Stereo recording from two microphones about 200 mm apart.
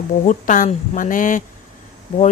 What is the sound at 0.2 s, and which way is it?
Speech, 40° left (ahead or behind).